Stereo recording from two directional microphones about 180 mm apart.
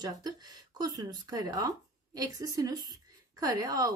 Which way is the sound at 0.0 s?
20° right (ahead or behind).